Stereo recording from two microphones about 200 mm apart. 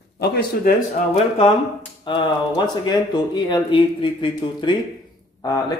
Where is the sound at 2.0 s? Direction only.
25° left (ahead or behind).